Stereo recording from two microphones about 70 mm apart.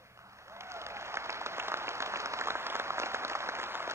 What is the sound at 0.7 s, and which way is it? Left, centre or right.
Applause, right.